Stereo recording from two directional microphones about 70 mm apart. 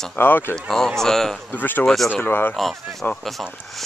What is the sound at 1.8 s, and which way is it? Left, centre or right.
Speech, centre.